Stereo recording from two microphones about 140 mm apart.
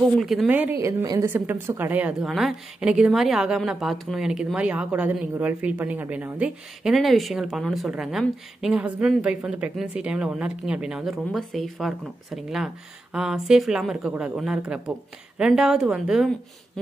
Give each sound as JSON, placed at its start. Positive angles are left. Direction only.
{"t": 0.2, "sound": "a woman's voice", "side_deg": 0}
{"t": 0.5, "sound": "speech", "side_deg": -15}
{"t": 0.8, "sound": "a woman's voice", "side_deg": -25}
{"t": 1.2, "sound": "a woman's voice", "side_deg": -15}
{"t": 16.8, "sound": "a sound", "side_deg": 5}